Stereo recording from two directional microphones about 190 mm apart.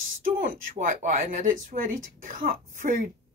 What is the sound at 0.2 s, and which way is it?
A woman's voice, 45° right (ahead or behind).